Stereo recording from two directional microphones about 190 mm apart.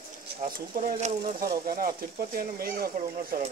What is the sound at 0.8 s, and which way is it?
Speech, 45° right (ahead or behind).